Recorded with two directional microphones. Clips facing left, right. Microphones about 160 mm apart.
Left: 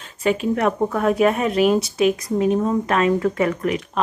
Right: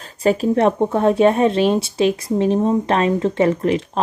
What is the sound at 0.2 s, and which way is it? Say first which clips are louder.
Speech: right 4 dB; 35° right (ahead or behind).